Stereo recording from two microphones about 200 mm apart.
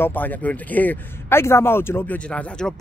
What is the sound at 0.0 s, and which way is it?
A man's voice, 10° left (ahead or behind).